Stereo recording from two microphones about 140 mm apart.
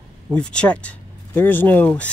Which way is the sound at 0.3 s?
5° left (ahead or behind).